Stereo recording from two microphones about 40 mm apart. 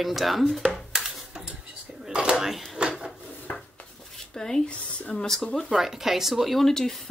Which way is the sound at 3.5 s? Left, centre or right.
Left.